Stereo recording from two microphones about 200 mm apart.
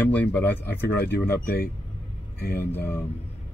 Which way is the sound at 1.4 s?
50° left (ahead or behind).